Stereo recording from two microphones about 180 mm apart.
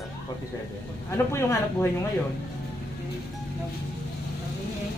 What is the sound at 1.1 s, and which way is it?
Speech, 15° left (ahead or behind).